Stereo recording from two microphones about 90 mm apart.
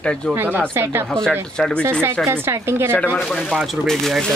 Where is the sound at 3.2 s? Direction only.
5° left (ahead or behind).